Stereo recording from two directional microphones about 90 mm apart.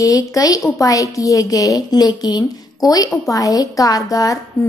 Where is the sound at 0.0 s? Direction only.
40° left (ahead or behind).